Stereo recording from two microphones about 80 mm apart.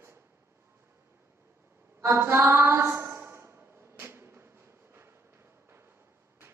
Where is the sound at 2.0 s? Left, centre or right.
Right.